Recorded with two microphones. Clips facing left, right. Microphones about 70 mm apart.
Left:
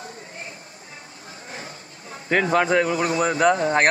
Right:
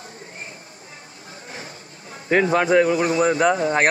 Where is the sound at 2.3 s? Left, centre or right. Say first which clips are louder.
Right 2 dB; centre.